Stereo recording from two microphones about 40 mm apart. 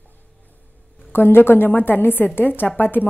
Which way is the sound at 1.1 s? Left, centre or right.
Left.